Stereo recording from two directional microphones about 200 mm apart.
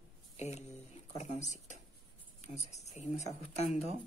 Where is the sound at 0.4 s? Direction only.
35° left (ahead or behind).